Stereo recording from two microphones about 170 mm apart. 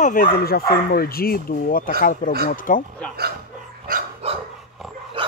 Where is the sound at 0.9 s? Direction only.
60° left (ahead or behind).